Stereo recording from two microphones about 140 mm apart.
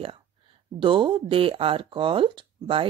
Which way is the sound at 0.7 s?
35° right (ahead or behind).